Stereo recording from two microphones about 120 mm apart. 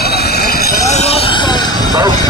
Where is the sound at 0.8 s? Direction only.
65° left (ahead or behind).